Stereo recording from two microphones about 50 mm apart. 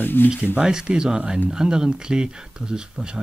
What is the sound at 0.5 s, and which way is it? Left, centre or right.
Speech, centre.